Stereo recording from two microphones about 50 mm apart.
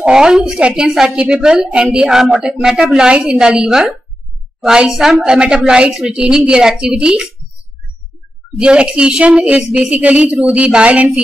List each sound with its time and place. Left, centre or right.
0.0 s a woman's voice: centre
2.0 s a woman's voice: centre
4.6 s a woman's voice: centre
6.1 s a woman's voice: right
8.5 s a woman's voice: right